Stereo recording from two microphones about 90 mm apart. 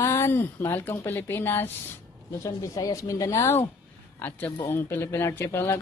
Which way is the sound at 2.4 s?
40° left (ahead or behind).